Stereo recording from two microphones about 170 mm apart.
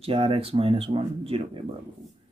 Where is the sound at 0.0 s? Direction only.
35° right (ahead or behind).